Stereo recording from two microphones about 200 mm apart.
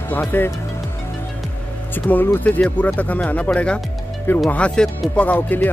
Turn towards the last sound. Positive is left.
turn(degrees=10)  # may be behind; listen again after turning